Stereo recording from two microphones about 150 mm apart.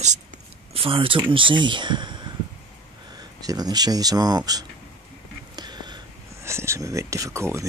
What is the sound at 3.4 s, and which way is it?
Speech, 25° right (ahead or behind).